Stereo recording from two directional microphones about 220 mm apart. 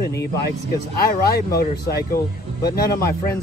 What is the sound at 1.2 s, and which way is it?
Speech, 45° left (ahead or behind).